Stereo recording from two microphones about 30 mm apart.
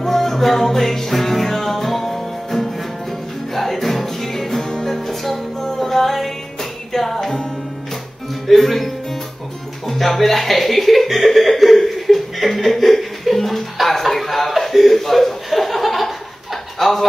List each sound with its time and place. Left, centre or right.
0.0 s music: centre
4.8 s music: centre
8.5 s music: centre
9.8 s chuckle: centre
16.7 s a sound: centre